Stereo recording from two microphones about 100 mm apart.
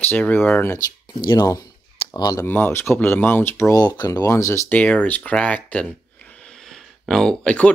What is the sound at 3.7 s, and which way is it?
Speech, 40° left (ahead or behind).